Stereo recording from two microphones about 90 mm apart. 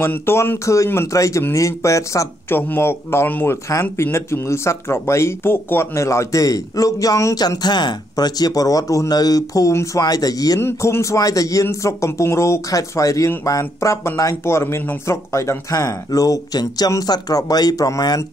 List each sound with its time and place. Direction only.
0.0 s speech: 25° left (ahead or behind)
2.5 s speech: 25° left (ahead or behind); by 10.6 s 45° left (ahead or behind)
10.6 s speech: 30° left (ahead or behind)